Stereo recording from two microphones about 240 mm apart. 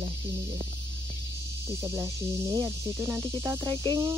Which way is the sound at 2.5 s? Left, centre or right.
Centre.